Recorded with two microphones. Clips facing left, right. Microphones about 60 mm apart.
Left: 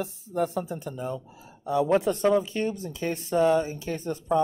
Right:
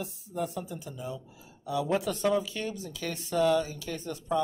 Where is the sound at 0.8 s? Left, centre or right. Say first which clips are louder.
Left 6 dB; left.